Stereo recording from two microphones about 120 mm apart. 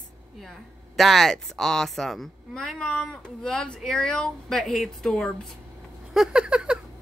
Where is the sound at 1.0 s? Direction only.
Centre (ahead or behind).